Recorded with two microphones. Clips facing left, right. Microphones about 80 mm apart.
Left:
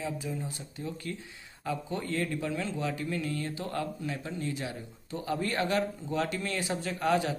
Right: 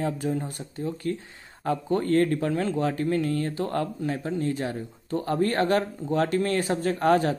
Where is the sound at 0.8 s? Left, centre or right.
Right.